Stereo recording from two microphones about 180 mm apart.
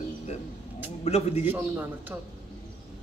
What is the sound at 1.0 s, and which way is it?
Speech, 35° left (ahead or behind).